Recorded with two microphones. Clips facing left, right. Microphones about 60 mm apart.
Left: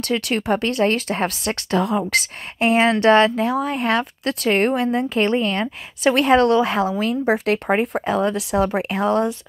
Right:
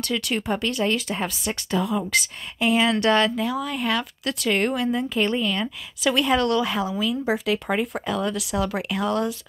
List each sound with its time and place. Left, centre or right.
0.1 s speech: left